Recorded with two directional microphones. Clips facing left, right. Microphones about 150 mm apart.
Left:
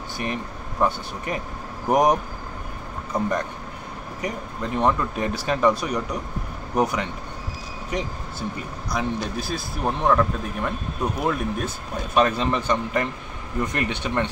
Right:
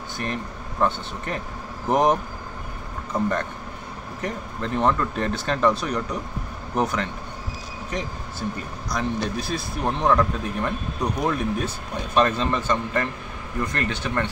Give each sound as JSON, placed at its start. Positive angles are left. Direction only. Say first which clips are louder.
{"t": 0.2, "sound": "speech", "louder": "left 1 dB", "side_deg": 10}
{"t": 8.9, "sound": "speech", "louder": "even", "side_deg": 5}